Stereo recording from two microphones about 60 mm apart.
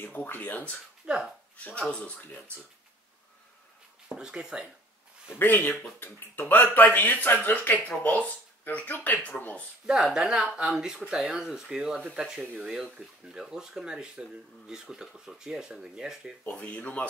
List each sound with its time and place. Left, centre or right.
0.0 s speech: left
1.0 s speech: centre
1.6 s speech: centre
2.1 s speech: left
4.1 s speech: centre
5.3 s speech: left
5.7 s speech: centre
6.4 s speech: left
9.8 s speech: centre
16.4 s speech: left